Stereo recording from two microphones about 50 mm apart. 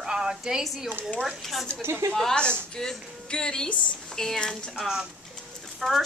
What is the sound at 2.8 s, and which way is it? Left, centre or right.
Speech, centre.